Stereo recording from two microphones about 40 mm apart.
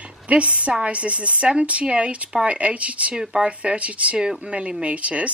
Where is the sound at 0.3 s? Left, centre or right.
Right.